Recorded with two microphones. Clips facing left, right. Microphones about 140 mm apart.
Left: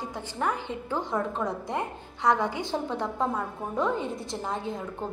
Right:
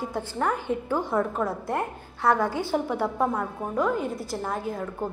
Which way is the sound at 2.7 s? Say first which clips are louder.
Right 4 dB; 10° right (ahead or behind).